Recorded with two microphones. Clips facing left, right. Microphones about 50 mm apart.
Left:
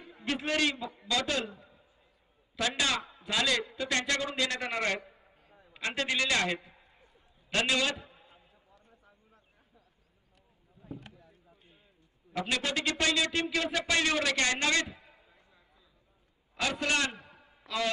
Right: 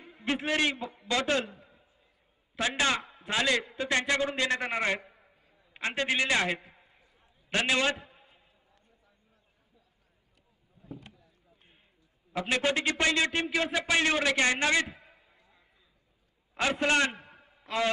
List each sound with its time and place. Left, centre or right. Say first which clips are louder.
0.2 s a man's voice: right 1 dB; right
1.4 s a man's voice: even; right
2.5 s a man's voice: right 2 dB; right
3.0 s a man's voice: right 1 dB; right; by 6.6 s centre
7.5 s speech: right 2 dB; right
8.8 s a sound: left 5 dB; left
11.5 s run: left 2 dB; right
12.4 s speech: right 4 dB; right
13.5 s a man's voice: right 2 dB; centre
14.9 s a sound: right 1 dB; right
16.5 s speech: right 4 dB; right
17.2 s a sound: right 1 dB; right